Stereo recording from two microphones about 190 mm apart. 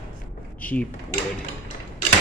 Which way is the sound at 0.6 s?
10° left (ahead or behind).